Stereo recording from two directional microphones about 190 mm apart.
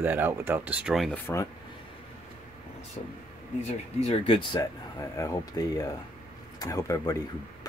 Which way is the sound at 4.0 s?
30° left (ahead or behind).